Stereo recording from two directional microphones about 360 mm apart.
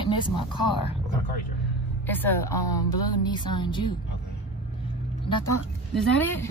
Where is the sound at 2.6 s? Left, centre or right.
Left.